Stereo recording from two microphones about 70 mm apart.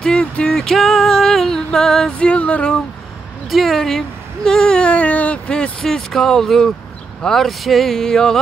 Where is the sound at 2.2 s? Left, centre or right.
Centre.